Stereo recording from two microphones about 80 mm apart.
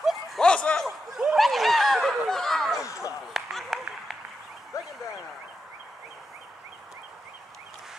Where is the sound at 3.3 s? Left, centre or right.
Centre.